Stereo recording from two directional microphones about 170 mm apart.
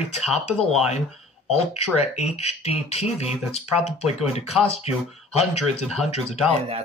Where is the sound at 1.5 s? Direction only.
40° left (ahead or behind).